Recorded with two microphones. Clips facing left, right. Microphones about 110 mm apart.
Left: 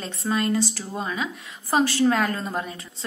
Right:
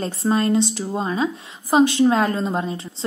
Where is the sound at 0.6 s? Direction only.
20° right (ahead or behind).